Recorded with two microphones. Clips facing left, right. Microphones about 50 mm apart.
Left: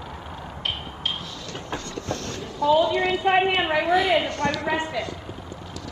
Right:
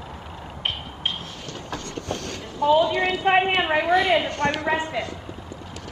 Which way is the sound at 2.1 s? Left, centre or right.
Right.